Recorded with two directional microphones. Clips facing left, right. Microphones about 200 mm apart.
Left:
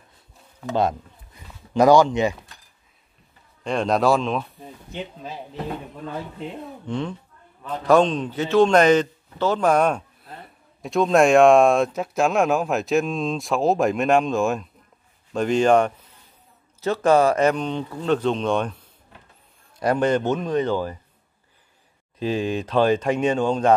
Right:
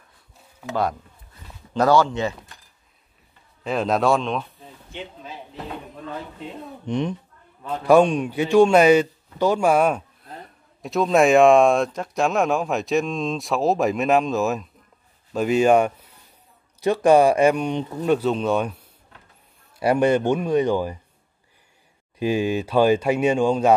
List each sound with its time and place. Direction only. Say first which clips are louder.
0.7 s speech: left 2 dB; 20° left (ahead or behind)
3.6 s speech: left 1 dB; 5° right (ahead or behind)
6.9 s a woman's voice: right 4 dB; 20° right (ahead or behind)
22.2 s a man's voice: right 2 dB; 10° right (ahead or behind)